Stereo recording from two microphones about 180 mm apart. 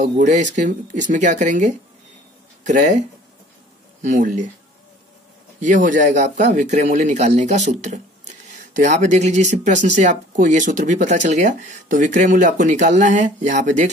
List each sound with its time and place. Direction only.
0.0 s speech: 40° right (ahead or behind)
5.6 s speech: 45° right (ahead or behind)